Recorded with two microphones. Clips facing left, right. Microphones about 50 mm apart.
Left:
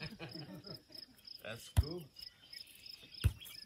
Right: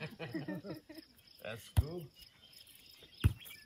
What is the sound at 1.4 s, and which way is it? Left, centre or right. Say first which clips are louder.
Cricket: right 2 dB; centre.